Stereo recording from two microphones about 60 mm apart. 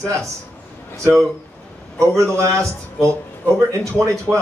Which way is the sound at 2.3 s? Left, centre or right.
Right.